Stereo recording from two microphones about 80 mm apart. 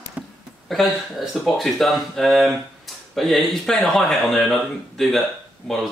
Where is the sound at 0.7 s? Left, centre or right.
Centre.